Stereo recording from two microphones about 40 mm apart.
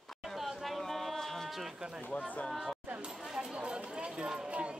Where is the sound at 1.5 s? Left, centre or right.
Centre.